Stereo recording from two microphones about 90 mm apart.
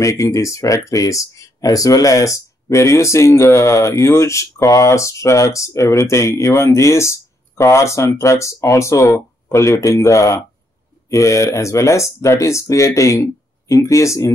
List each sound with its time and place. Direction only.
0.0 s speech: 35° left (ahead or behind)